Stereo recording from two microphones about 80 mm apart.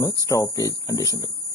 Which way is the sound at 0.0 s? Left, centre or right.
Left.